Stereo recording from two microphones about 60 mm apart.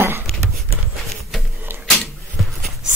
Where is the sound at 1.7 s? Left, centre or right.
Right.